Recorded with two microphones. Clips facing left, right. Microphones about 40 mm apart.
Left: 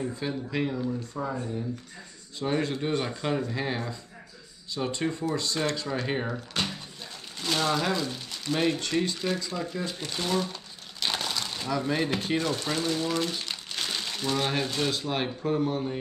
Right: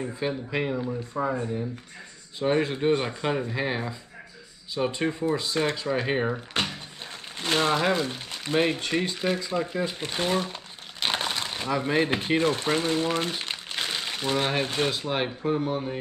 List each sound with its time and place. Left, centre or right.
0.0 s speech: centre
7.3 s speech: right
14.9 s speech: centre